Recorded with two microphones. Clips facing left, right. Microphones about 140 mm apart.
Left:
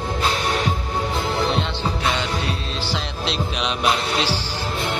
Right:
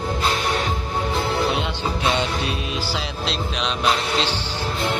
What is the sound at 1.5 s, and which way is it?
Music, 20° right (ahead or behind).